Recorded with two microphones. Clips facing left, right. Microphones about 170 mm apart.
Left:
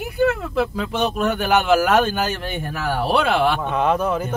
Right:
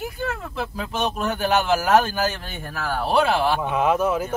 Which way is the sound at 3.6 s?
5° right (ahead or behind).